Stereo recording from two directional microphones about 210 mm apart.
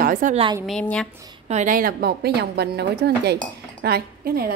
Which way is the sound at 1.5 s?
40° right (ahead or behind).